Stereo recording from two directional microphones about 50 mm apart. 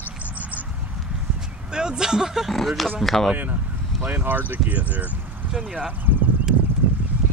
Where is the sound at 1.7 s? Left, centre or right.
Centre.